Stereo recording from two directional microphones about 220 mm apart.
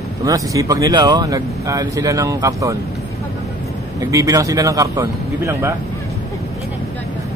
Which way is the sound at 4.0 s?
15° right (ahead or behind).